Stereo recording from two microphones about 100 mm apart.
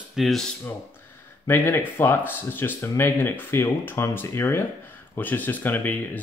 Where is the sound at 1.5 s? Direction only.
20° left (ahead or behind).